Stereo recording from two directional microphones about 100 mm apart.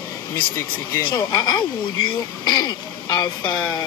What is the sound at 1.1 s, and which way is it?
Speech, 45° left (ahead or behind).